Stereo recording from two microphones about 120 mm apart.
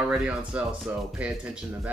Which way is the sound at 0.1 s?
10° right (ahead or behind).